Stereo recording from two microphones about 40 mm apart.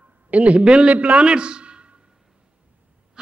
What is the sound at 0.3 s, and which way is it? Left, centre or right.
A man's voice, right.